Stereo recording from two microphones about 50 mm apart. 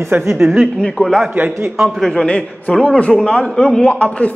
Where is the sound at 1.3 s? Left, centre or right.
Right.